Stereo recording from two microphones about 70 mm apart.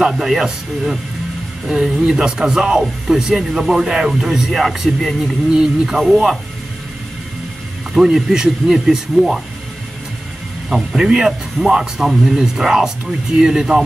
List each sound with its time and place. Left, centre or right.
0.0 s speech: centre
7.9 s speech: centre
11.0 s speech: centre